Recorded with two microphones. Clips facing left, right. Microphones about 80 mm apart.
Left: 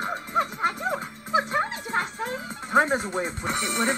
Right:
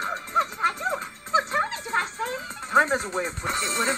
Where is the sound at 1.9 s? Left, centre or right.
Left.